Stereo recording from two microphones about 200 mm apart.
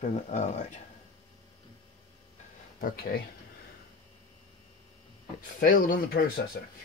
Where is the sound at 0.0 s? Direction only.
35° left (ahead or behind).